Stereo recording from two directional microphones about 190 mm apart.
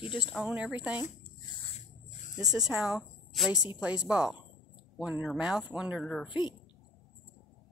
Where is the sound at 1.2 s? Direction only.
25° left (ahead or behind).